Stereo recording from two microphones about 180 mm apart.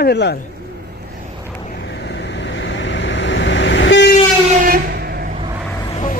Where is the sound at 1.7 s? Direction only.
75° left (ahead or behind).